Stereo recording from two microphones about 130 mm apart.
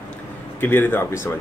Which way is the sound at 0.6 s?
15° left (ahead or behind).